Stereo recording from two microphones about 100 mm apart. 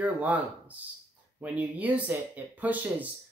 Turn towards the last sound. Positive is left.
turn(degrees=-15)  # may be behind; listen again after turning